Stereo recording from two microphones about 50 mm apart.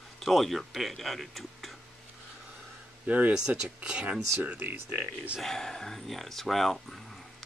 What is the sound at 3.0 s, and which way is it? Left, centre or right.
Speech, right.